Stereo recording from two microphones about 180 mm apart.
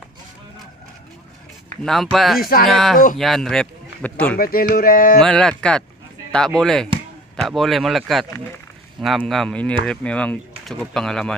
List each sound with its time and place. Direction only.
1.8 s speech: centre (ahead or behind)
4.4 s a sound: 55° left (ahead or behind)
5.2 s speech: 5° left (ahead or behind)